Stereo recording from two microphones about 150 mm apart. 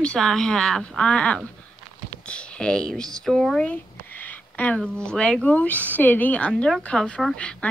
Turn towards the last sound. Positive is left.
turn(degrees=10)  # may be behind; listen again after turning